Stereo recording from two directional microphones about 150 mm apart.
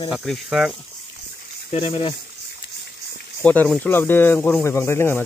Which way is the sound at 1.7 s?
35° left (ahead or behind).